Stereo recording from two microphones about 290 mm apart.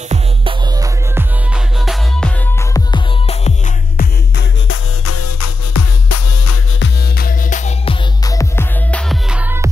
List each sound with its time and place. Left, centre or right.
0.1 s music: centre
2.9 s music: left
5.0 s music: left
6.8 s music: left; by 9.7 s centre